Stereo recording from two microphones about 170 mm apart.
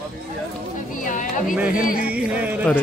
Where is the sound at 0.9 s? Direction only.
50° left (ahead or behind).